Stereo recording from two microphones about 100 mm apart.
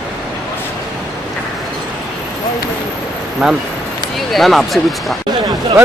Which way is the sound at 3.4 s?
5° right (ahead or behind).